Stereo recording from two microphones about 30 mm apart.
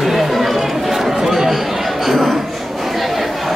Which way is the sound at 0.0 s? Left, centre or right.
Centre.